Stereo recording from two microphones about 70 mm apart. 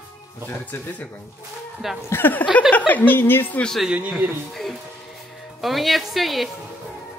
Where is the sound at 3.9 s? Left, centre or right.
Centre.